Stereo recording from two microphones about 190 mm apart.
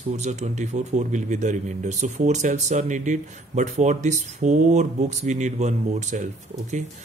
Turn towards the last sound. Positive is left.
turn(degrees=-40)  # may be behind; listen again after turning